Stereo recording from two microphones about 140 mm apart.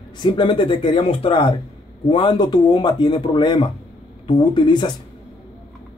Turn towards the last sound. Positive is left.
turn(degrees=30)  # may be behind; listen again after turning